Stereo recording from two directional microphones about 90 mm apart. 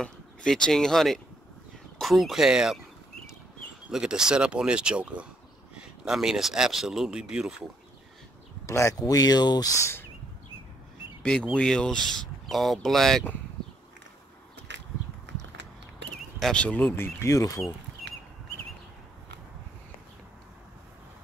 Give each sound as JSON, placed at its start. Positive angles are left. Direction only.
{"t": 0.0, "sound": "speech", "side_deg": 10}
{"t": 3.9, "sound": "speech", "side_deg": -10}
{"t": 8.6, "sound": "speech", "side_deg": 30}
{"t": 11.5, "sound": "speech", "side_deg": 10}
{"t": 16.3, "sound": "speech", "side_deg": 5}
{"t": 16.6, "sound": "speech", "side_deg": 15}
{"t": 16.9, "sound": "speech", "side_deg": 30}